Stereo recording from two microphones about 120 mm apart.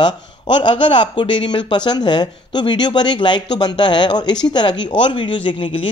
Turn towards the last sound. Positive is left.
turn(degrees=45)  # may be behind; listen again after turning